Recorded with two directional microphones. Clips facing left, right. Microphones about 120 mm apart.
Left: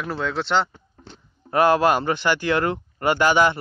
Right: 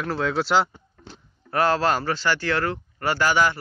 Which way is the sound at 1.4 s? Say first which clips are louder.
Left 4 dB; 15° left (ahead or behind).